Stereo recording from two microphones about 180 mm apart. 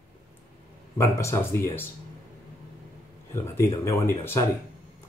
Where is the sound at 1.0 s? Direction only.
15° left (ahead or behind).